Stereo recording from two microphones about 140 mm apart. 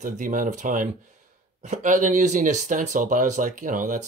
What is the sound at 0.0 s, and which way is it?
Speech, 70° right (ahead or behind).